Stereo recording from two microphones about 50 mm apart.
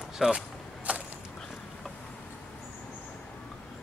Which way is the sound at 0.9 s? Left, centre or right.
Right.